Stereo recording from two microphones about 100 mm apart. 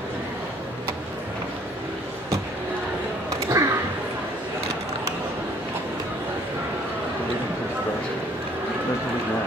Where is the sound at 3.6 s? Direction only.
35° right (ahead or behind).